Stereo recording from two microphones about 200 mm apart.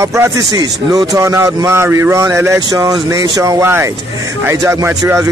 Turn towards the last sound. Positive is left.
turn(degrees=-15)  # may be behind; listen again after turning